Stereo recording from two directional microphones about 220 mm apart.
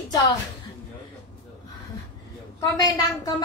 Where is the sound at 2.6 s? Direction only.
15° left (ahead or behind).